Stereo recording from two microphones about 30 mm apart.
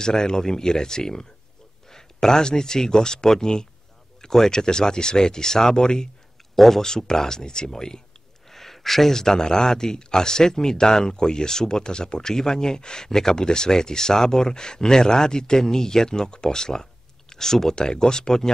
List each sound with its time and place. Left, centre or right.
0.0 s speech: left
4.2 s a sound: centre
4.5 s speech: left
6.5 s speech: centre
6.8 s speech: centre
8.5 s a sound: centre
9.2 s speech: left